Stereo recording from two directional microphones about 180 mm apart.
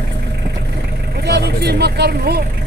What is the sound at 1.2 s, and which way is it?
Speech, 65° right (ahead or behind).